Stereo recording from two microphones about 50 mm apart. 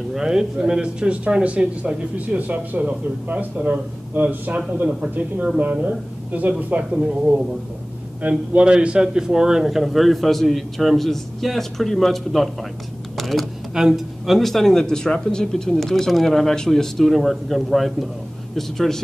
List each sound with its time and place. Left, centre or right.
0.1 s speech: centre; by 3.4 s right
3.5 s speech: centre
4.1 s speech: right
7.0 s a man's voice: centre
13.2 s computer keyboard: centre
13.7 s a man's voice: centre